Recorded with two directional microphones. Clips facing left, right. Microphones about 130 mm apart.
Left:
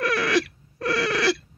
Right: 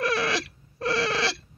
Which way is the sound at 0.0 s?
25° right (ahead or behind).